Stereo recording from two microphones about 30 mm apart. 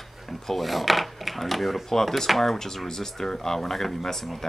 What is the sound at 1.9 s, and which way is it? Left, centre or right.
Speech, centre.